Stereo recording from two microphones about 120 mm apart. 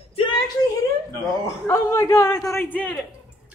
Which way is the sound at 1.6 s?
25° left (ahead or behind).